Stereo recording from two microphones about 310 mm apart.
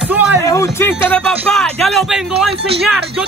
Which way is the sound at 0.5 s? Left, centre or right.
Centre.